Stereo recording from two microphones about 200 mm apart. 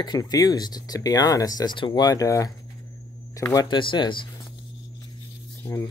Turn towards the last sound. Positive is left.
turn(degrees=10)  # may be behind; listen again after turning